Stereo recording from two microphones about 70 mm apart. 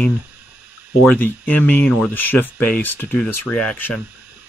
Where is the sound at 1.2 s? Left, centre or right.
Left.